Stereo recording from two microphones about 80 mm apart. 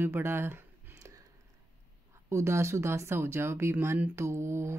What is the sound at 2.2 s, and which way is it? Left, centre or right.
Speech, right.